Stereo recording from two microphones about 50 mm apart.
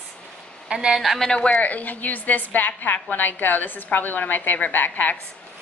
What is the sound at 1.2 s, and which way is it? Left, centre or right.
Speech, left.